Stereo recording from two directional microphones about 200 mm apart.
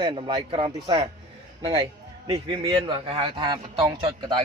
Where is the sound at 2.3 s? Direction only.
25° right (ahead or behind).